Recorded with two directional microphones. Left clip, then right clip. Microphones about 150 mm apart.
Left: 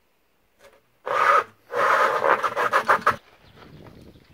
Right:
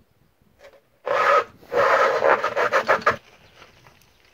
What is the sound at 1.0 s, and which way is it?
Filing, 15° left (ahead or behind).